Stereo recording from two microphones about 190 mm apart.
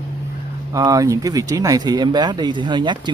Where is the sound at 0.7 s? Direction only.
15° right (ahead or behind).